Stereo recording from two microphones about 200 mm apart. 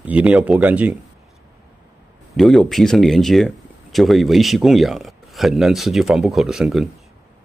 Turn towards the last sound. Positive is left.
turn(degrees=0)  # may be behind; listen again after turning